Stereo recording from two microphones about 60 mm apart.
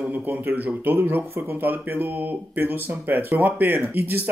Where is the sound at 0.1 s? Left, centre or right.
Right.